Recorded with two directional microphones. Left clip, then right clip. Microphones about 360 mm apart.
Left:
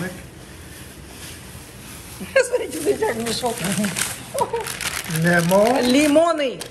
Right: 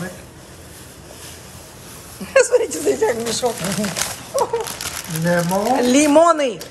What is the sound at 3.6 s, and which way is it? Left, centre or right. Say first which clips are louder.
Speech: right 1 dB; centre.